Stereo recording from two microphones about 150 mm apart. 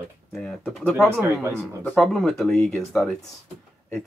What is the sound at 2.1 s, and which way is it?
Speech, centre (ahead or behind).